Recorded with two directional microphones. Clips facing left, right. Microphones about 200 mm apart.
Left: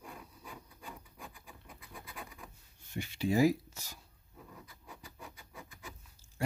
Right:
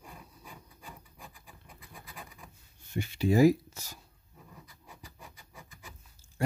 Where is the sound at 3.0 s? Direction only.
45° right (ahead or behind).